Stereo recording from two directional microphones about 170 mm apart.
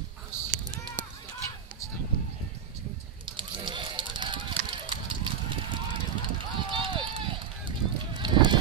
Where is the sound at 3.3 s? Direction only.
30° right (ahead or behind).